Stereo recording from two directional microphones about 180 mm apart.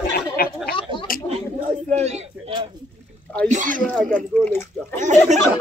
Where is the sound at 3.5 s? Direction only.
45° right (ahead or behind).